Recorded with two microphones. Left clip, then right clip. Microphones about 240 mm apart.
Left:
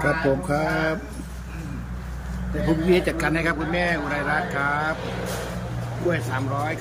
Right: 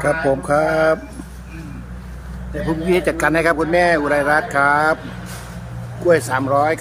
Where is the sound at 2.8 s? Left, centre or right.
Centre.